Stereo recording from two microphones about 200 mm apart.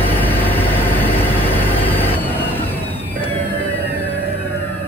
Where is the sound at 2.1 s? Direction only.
10° left (ahead or behind).